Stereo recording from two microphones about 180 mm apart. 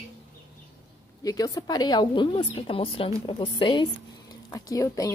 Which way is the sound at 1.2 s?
20° left (ahead or behind).